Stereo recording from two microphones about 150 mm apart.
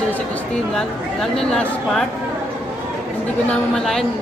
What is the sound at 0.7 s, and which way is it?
A woman's voice, 5° left (ahead or behind).